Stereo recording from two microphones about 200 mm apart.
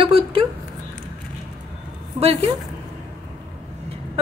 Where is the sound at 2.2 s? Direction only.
30° right (ahead or behind).